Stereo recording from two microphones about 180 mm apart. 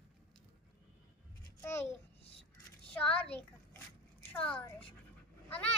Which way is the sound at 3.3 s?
10° left (ahead or behind).